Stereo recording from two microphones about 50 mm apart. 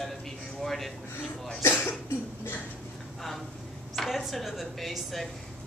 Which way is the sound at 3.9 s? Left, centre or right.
Centre.